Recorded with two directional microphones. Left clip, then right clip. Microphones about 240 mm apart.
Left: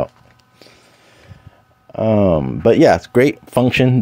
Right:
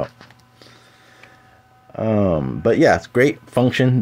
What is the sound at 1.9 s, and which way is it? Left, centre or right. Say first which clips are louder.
Speech: left 5 dB; left.